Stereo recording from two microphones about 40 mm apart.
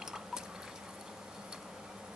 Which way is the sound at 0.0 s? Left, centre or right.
Centre.